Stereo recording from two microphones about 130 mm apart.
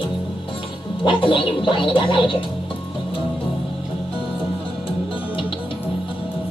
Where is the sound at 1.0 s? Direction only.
40° left (ahead or behind).